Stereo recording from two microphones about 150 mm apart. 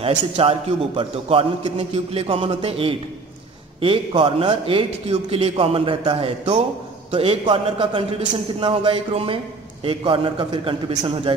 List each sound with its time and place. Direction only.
0.0 s a man's voice: 40° right (ahead or behind)